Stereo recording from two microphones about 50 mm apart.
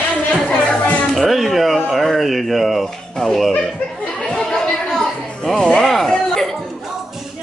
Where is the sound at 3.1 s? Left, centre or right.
Centre.